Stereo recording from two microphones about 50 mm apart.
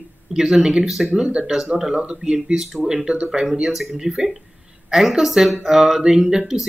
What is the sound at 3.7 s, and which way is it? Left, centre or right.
Speech, centre.